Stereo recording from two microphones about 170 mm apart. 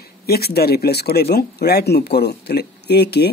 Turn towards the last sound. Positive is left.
turn(degrees=75)  # may be behind; listen again after turning